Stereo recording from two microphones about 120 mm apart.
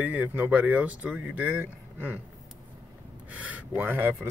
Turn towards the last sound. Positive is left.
turn(degrees=-15)  # may be behind; listen again after turning